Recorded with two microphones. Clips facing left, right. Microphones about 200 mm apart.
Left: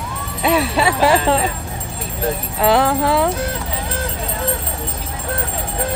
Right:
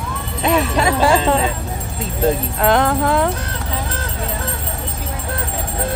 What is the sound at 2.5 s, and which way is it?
Music, 5° left (ahead or behind).